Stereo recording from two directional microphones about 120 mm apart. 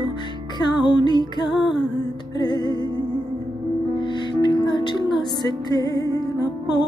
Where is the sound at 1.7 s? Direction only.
35° left (ahead or behind).